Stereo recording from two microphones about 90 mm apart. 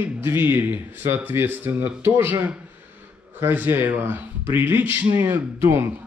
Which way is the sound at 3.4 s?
20° right (ahead or behind).